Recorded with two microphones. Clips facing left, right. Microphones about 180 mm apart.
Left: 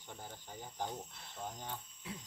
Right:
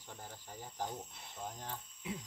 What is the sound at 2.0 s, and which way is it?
Speech, 20° right (ahead or behind).